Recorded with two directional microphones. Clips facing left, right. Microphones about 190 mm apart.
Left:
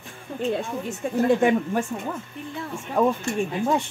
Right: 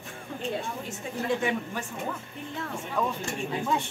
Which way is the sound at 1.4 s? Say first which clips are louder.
Left 9 dB; 50° left (ahead or behind).